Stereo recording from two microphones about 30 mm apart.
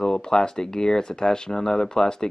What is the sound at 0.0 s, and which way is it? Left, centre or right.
Speech, left.